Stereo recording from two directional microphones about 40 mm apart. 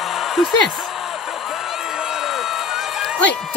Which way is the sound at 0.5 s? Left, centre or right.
Centre.